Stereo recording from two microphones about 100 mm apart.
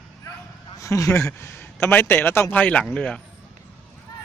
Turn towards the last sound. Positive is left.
turn(degrees=10)  # may be behind; listen again after turning